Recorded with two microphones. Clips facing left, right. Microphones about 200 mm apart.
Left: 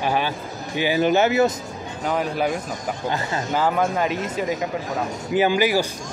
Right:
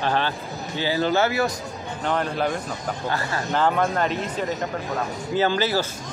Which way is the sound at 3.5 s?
5° left (ahead or behind).